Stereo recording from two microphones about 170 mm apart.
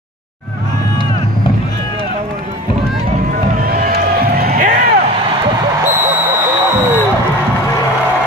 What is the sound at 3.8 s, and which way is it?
Music, 60° right (ahead or behind).